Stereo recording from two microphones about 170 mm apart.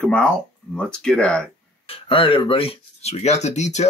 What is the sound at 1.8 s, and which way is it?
Speech, 30° left (ahead or behind).